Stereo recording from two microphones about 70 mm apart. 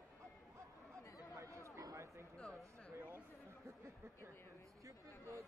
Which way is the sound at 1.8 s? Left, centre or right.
Right.